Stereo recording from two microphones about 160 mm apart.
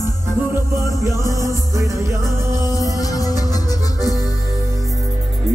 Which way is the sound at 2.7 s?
20° left (ahead or behind).